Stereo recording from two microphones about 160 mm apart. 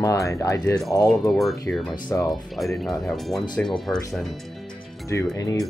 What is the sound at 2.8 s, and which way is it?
Speech, centre (ahead or behind).